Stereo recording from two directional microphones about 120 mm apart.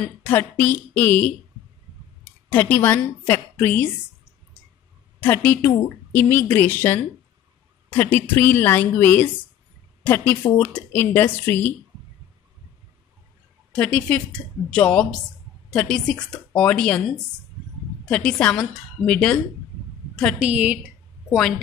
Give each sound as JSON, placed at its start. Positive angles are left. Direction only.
{"t": 0.2, "sound": "a woman's voice", "side_deg": 15}
{"t": 2.5, "sound": "a woman's voice", "side_deg": 15}
{"t": 5.2, "sound": "a woman's voice", "side_deg": 15}
{"t": 13.7, "sound": "a woman's voice", "side_deg": 10}
{"t": 18.0, "sound": "a woman's voice", "side_deg": 10}
{"t": 20.3, "sound": "a woman's voice", "side_deg": -10}
{"t": 21.3, "sound": "a woman's voice", "side_deg": 0}